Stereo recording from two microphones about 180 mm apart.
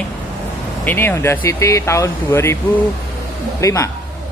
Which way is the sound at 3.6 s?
15° left (ahead or behind).